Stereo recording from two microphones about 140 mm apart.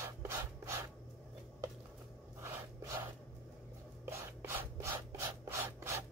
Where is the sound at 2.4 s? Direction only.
20° right (ahead or behind).